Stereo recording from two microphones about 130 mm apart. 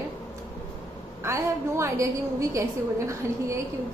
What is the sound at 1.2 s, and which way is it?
Speech, 20° right (ahead or behind).